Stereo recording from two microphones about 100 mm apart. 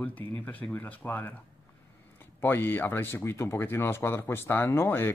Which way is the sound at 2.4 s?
20° left (ahead or behind).